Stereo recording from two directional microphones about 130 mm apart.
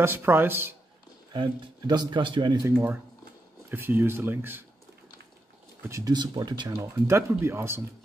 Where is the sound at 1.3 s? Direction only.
35° right (ahead or behind).